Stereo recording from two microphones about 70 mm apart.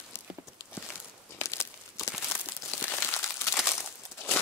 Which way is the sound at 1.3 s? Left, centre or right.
Left.